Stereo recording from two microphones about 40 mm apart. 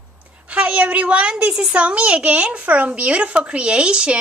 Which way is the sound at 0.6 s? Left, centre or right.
Right.